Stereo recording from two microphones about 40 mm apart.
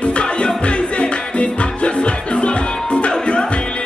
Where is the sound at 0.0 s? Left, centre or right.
Left.